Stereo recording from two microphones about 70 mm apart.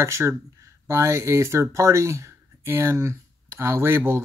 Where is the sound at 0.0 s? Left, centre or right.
Right.